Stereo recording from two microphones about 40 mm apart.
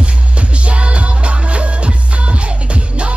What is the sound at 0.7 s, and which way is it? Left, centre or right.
Music, right.